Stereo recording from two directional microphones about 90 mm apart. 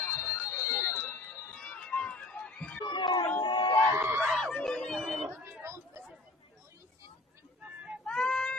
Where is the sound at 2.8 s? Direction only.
55° left (ahead or behind).